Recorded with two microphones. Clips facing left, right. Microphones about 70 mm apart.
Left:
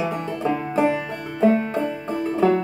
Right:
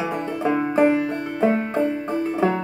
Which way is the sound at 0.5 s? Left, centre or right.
Right.